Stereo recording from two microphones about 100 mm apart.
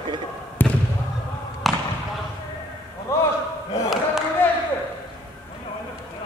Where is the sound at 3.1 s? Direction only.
30° left (ahead or behind).